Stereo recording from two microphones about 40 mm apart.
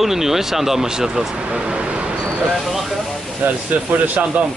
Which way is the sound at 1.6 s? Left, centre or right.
Right.